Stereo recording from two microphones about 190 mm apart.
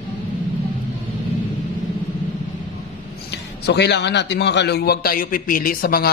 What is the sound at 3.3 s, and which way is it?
A man's voice, 60° left (ahead or behind).